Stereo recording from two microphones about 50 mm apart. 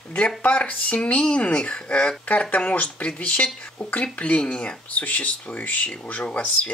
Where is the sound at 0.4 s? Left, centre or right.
Left.